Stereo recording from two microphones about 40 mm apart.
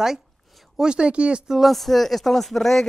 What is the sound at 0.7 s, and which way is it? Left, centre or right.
Speech, right.